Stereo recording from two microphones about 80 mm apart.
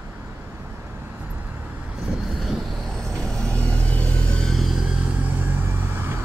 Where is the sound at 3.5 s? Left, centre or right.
Centre.